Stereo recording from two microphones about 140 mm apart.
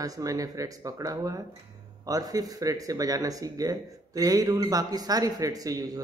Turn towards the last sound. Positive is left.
turn(degrees=-25)  # may be behind; listen again after turning